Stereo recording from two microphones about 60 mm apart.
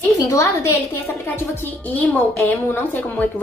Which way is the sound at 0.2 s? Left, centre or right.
Left.